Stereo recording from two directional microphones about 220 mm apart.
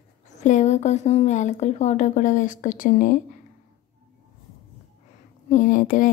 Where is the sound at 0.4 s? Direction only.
30° left (ahead or behind).